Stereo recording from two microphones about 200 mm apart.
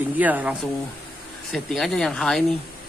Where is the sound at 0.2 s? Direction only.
10° right (ahead or behind).